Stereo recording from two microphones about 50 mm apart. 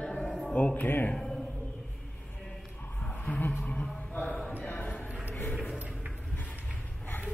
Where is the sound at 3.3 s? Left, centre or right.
Left.